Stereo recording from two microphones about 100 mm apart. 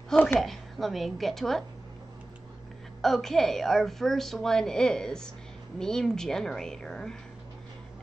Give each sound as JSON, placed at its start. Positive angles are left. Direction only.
{"t": 0.1, "sound": "a sound", "side_deg": 15}
{"t": 0.4, "sound": "a woman's voice", "side_deg": 0}
{"t": 3.0, "sound": "a woman's voice", "side_deg": 5}